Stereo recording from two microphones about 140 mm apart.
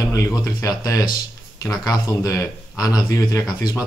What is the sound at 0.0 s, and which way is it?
Speech, 25° left (ahead or behind).